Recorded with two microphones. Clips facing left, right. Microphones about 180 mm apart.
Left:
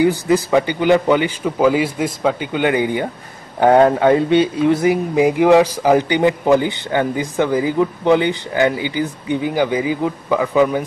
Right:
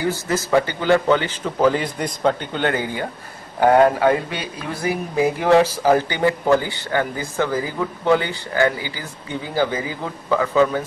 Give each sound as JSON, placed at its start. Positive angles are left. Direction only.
{"t": 0.0, "sound": "a man's voice", "side_deg": 15}